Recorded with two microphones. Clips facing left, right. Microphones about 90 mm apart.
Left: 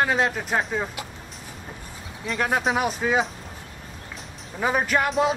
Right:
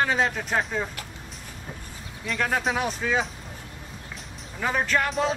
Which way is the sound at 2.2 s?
10° left (ahead or behind).